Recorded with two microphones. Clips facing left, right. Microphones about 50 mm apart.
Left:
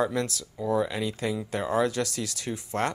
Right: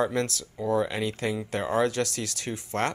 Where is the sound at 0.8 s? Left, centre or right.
Right.